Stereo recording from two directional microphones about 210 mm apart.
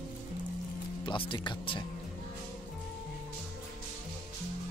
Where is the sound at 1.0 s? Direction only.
25° left (ahead or behind).